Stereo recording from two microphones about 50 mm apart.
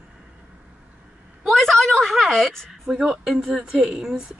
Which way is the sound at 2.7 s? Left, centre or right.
Centre.